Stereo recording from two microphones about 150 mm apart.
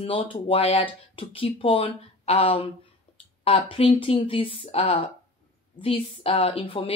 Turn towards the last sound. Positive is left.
turn(degrees=35)  # may be behind; listen again after turning